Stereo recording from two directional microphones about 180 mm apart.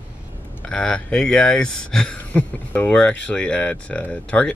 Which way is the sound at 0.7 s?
5° left (ahead or behind).